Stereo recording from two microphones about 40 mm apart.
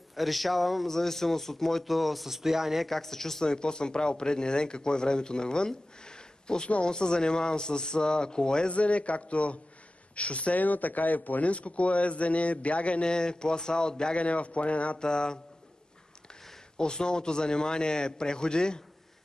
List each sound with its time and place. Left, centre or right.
0.1 s a man's voice: centre
2.9 s speech: centre
3.4 s speech: left
8.7 s speech: left
13.0 s speech: left
14.1 s speech: left
15.0 s speech: left
16.7 s speech: centre